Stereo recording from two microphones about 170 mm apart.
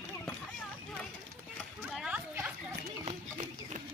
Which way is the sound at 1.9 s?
5° right (ahead or behind).